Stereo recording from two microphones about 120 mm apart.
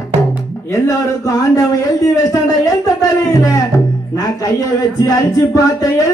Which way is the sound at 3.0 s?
30° left (ahead or behind).